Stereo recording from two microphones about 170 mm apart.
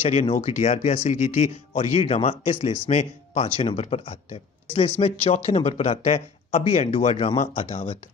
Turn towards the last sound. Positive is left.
turn(degrees=35)  # may be behind; listen again after turning